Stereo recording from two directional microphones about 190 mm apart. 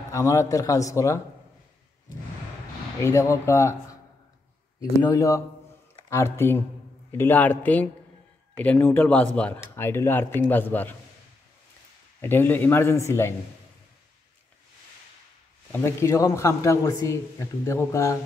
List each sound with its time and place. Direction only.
0.1 s speech: 15° left (ahead or behind)
3.0 s speech: 15° left (ahead or behind)
12.2 s speech: 10° left (ahead or behind)
15.7 s speech: 15° left (ahead or behind)